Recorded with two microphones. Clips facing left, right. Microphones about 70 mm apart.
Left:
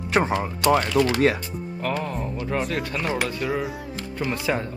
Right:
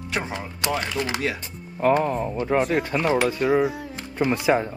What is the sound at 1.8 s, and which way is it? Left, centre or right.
Speech, right.